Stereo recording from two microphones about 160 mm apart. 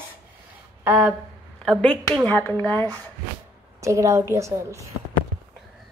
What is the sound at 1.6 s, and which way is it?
Speech, 10° left (ahead or behind).